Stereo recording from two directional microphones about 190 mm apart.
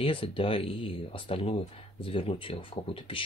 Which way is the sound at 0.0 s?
25° left (ahead or behind).